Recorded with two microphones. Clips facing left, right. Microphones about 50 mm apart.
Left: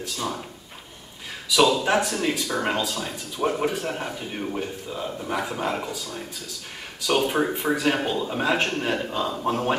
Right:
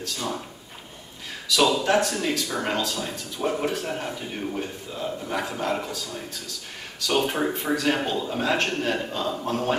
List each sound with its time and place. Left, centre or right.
0.0 s a man's voice: centre
1.8 s a man's voice: centre
7.0 s a man's voice: centre